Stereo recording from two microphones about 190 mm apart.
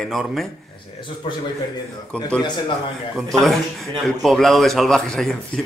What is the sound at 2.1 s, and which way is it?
Speech, 5° left (ahead or behind).